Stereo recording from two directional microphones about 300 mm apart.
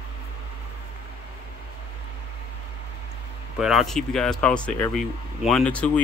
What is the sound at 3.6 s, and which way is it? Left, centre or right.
Speech, centre.